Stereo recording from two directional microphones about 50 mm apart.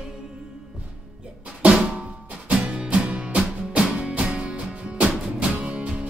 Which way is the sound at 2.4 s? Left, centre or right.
Right.